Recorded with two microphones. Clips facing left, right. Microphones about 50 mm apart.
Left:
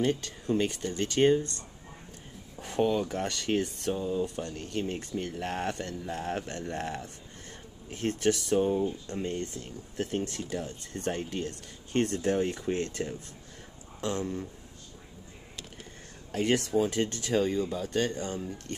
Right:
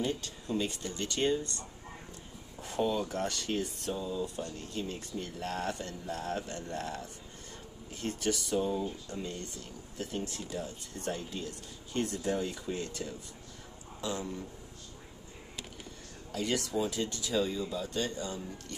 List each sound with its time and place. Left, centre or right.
0.6 s speech: left
2.6 s speech: left
6.4 s speech: left
6.8 s speech: left
7.9 s speech: left
16.3 s speech: left